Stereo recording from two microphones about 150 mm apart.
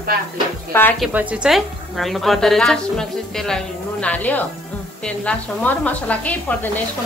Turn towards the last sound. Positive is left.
turn(degrees=10)  # may be behind; listen again after turning